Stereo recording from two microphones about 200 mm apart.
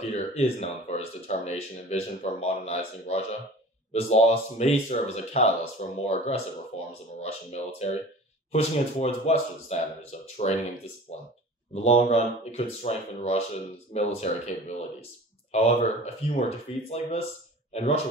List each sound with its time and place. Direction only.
0.1 s speech: 30° left (ahead or behind)